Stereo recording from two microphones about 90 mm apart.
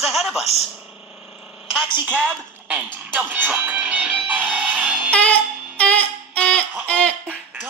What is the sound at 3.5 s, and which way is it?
Music, 15° right (ahead or behind).